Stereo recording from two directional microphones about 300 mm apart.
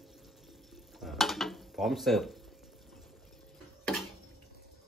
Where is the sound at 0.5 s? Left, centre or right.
Centre.